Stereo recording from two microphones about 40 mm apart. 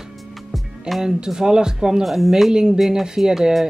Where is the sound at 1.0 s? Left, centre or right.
Centre.